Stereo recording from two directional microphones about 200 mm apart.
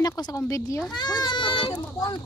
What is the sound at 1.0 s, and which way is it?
Children playing, 20° left (ahead or behind).